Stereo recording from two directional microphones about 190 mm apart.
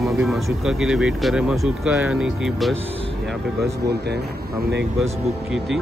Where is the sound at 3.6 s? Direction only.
60° right (ahead or behind).